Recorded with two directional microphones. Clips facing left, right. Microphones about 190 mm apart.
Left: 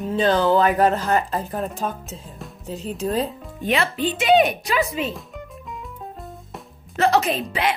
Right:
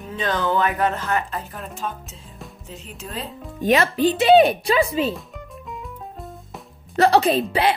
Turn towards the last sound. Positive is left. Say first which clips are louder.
# right 4 dB
turn(degrees=-35)  # may be behind; listen again after turning